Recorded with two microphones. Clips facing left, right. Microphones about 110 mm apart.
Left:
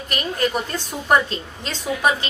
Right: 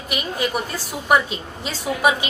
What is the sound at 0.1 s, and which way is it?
A woman's voice, 5° right (ahead or behind).